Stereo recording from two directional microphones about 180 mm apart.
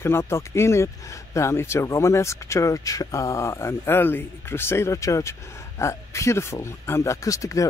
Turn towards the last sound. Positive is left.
turn(degrees=15)  # may be behind; listen again after turning